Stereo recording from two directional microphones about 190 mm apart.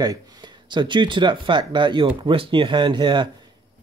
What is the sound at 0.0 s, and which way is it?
Speech, 20° right (ahead or behind).